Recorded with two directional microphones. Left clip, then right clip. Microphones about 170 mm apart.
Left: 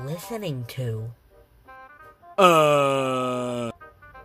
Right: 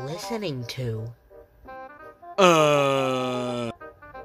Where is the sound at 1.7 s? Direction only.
45° right (ahead or behind).